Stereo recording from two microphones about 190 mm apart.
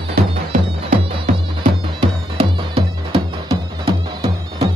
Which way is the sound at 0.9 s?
40° right (ahead or behind).